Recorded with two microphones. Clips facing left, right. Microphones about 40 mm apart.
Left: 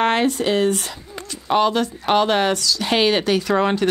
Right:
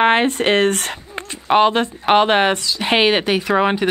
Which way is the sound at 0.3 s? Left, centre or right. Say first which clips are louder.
Right 3 dB; right.